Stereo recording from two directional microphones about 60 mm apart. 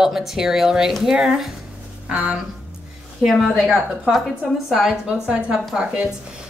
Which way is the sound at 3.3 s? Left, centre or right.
Centre.